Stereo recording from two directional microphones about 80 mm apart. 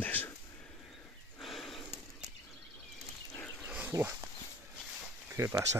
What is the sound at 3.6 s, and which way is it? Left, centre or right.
Wild animals, centre.